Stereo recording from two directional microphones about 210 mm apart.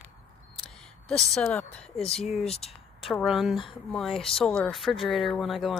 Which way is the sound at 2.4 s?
30° left (ahead or behind).